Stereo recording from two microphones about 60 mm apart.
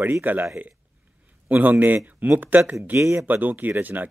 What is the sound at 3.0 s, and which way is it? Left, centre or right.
Speech, right.